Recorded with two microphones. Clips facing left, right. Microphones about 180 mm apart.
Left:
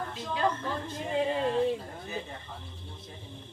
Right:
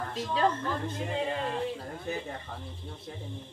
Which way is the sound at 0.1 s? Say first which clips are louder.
Right 4 dB; 35° right (ahead or behind).